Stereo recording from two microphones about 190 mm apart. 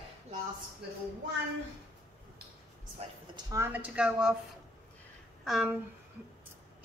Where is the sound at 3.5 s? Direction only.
15° right (ahead or behind).